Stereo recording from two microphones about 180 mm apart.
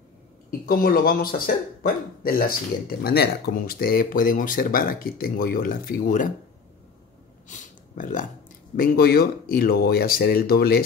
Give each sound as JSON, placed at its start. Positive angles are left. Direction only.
{"t": 0.5, "sound": "speech", "side_deg": 50}
{"t": 7.4, "sound": "a sound", "side_deg": 45}
{"t": 8.7, "sound": "speech", "side_deg": 55}